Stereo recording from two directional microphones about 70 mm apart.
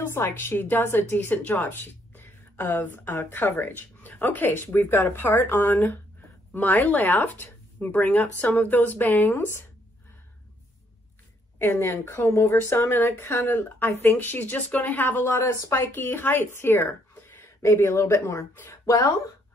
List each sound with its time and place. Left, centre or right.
0.1 s speech: left
1.7 s a sound: left
2.7 s speech: left
11.5 s speech: left